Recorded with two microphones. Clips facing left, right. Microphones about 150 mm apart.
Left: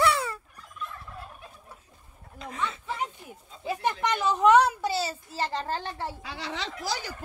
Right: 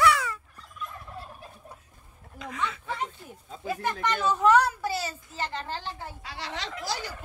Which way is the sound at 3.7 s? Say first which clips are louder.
Left 1 dB; 20° left (ahead or behind).